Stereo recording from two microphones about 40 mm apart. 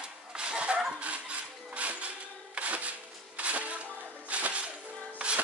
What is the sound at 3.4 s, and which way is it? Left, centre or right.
Music, right.